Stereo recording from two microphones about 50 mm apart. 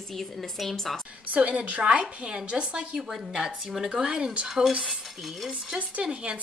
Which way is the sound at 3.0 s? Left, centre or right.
Centre.